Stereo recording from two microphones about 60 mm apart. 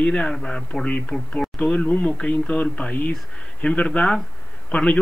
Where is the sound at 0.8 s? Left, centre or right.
Left.